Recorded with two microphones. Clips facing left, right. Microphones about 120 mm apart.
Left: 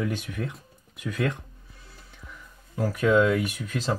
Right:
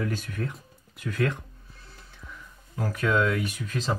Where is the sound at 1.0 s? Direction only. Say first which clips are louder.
Even; 15° left (ahead or behind).